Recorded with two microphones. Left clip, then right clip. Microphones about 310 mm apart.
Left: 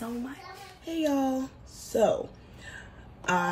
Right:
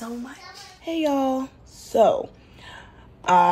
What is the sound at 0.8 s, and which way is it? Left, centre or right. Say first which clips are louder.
Speech: right 5 dB; right.